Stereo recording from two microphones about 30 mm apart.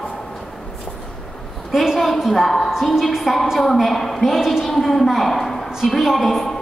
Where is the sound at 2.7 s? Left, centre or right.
Centre.